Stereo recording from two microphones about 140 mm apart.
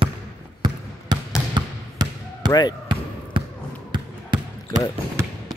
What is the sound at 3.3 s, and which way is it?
Basketball bounce, 35° right (ahead or behind).